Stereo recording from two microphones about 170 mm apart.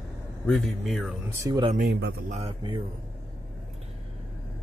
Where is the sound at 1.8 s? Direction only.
70° right (ahead or behind).